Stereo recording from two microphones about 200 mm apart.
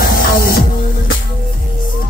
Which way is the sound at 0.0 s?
45° left (ahead or behind).